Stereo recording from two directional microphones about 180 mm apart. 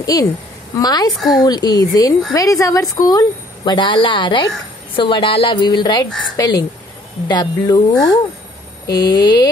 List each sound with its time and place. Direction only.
0.0 s a woman's voice: 20° left (ahead or behind)